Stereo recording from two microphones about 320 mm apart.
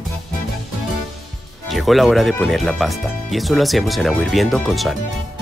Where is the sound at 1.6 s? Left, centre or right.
Centre.